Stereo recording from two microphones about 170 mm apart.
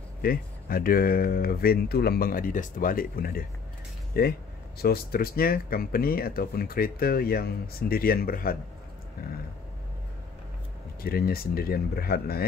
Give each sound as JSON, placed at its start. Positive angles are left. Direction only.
{"t": 0.2, "sound": "speech", "side_deg": 60}
{"t": 11.0, "sound": "speech", "side_deg": 60}